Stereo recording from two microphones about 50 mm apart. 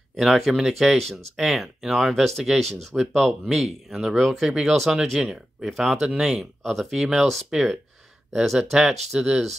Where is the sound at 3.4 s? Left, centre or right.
Centre.